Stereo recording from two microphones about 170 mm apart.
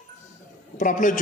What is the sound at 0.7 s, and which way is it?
Speech, 50° left (ahead or behind).